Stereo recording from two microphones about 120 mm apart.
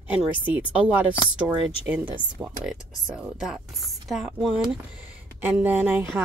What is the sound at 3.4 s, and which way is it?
Speech, centre (ahead or behind).